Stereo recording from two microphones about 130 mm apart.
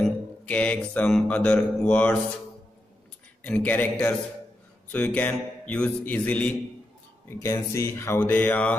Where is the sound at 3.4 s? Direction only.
10° left (ahead or behind).